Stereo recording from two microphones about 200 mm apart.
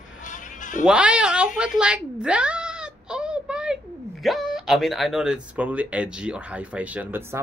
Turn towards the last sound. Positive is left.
turn(degrees=-10)  # may be behind; listen again after turning